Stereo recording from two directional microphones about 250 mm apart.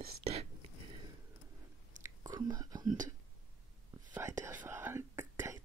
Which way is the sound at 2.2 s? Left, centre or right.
Centre.